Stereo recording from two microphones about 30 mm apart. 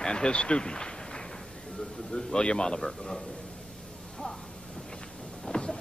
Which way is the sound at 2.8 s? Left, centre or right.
Centre.